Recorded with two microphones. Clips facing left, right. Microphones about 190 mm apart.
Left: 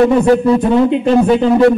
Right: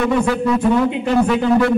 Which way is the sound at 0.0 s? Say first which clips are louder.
Left 7 dB; 35° left (ahead or behind).